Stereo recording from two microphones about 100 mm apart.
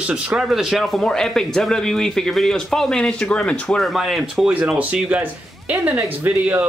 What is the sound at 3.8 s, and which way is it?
Speech, centre (ahead or behind).